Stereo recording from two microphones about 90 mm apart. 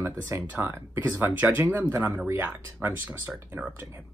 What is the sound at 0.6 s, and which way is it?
Speech, 25° right (ahead or behind).